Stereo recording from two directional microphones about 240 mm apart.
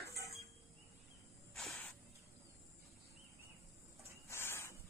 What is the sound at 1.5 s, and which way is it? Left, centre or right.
Snake, centre.